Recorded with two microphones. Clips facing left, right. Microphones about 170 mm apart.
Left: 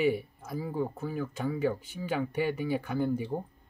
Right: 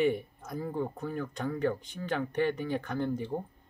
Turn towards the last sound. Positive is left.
turn(degrees=10)  # may be behind; listen again after turning